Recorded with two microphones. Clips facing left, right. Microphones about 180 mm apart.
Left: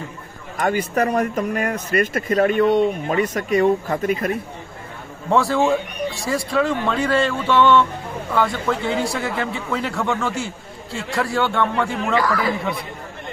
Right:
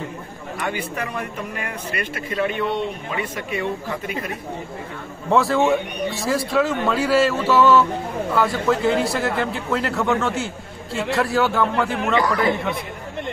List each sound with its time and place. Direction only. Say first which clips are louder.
0.6 s speech: left 7 dB; 45° left (ahead or behind)
5.3 s a man's voice: even; centre (ahead or behind)